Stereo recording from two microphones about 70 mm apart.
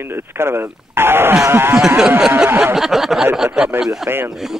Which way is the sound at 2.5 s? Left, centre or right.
Right.